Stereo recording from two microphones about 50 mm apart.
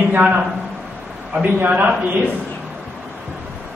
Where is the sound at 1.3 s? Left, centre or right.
Right.